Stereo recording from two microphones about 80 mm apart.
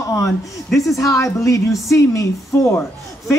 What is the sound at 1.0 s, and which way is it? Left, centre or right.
A woman's voice, left.